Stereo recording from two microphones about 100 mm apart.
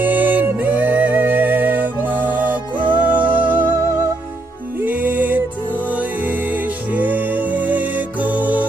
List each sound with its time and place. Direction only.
0.0 s music: 20° right (ahead or behind)
4.8 s music: 15° right (ahead or behind)